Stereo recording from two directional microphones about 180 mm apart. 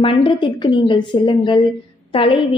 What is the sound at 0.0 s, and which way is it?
A woman's voice, 30° left (ahead or behind).